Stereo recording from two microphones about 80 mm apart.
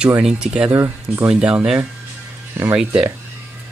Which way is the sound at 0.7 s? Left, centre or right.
Right.